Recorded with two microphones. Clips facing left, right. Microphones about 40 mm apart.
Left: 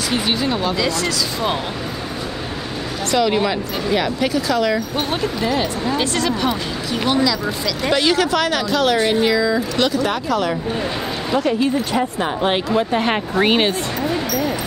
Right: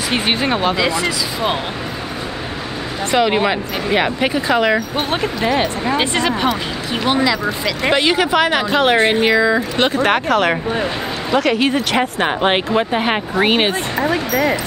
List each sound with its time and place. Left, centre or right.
0.1 s speech: right
0.7 s speech: centre
3.1 s speech: right
11.3 s speech: right
12.2 s speech: right
12.9 s speech: centre